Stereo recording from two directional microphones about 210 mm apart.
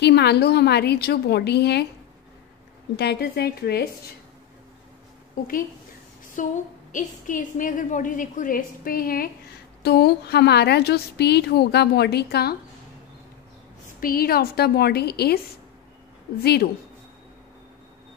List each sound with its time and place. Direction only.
0.0 s a woman's voice: 50° left (ahead or behind)
3.0 s a woman's voice: 50° left (ahead or behind)
6.4 s a woman's voice: 40° left (ahead or behind)
13.9 s a woman's voice: 45° left (ahead or behind)
16.3 s a woman's voice: 50° left (ahead or behind)